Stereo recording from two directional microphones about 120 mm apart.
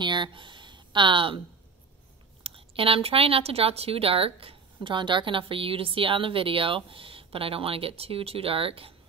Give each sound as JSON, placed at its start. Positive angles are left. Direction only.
{"t": 0.0, "sound": "speech", "side_deg": -40}
{"t": 2.4, "sound": "speech", "side_deg": -50}